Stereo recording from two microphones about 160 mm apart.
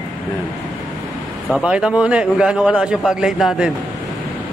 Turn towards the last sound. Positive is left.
turn(degrees=-5)  # may be behind; listen again after turning